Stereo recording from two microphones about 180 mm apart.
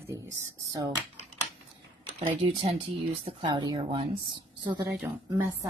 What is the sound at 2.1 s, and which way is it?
Speech, 35° right (ahead or behind).